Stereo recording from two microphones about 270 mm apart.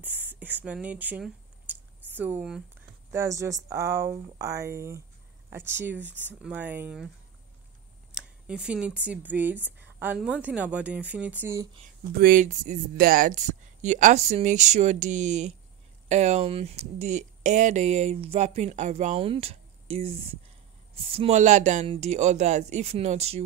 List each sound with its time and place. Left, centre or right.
0.0 s a sound: centre
3.1 s speech: centre
6.0 s speech: centre
6.4 s speech: centre
8.1 s a sound: centre
8.5 s a woman's voice: centre
12.2 s speech: right